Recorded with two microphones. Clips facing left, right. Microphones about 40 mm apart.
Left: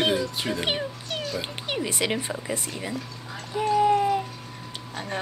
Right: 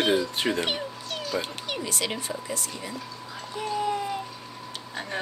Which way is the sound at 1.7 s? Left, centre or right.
Left.